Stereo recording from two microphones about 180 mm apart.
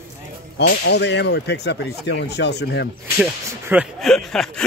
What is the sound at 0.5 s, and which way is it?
Speech, 70° left (ahead or behind).